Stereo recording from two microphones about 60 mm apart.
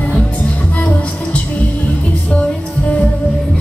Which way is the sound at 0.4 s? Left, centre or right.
Left.